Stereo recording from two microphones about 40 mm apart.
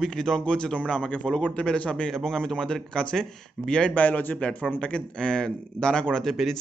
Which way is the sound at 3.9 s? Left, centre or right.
Left.